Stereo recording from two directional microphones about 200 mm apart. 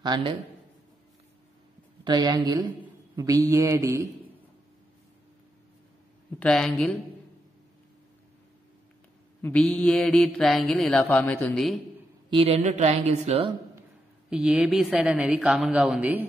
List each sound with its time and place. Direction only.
0.0 s speech: 25° right (ahead or behind)
2.0 s a man's voice: 20° right (ahead or behind)
6.4 s speech: 5° left (ahead or behind)
9.4 s speech: 5° left (ahead or behind)
12.3 s a woman's voice: 30° right (ahead or behind)
14.3 s speech: 5° right (ahead or behind)